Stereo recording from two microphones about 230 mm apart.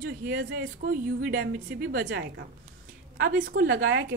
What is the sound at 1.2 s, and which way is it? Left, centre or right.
A woman's voice, right.